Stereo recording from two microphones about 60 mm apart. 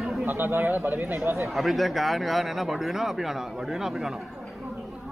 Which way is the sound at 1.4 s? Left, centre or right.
Centre.